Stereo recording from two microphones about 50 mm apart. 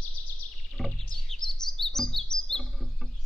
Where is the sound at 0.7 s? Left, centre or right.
Centre.